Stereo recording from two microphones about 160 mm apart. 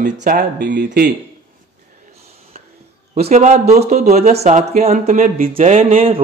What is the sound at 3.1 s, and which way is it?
Speech, 45° right (ahead or behind).